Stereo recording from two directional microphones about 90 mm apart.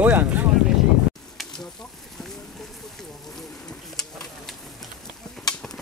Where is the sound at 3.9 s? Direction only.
5° left (ahead or behind).